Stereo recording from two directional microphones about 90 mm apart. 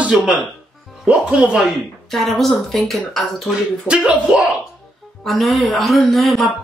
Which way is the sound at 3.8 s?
10° right (ahead or behind).